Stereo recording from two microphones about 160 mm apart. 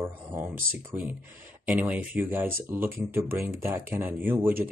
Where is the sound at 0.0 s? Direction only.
15° right (ahead or behind).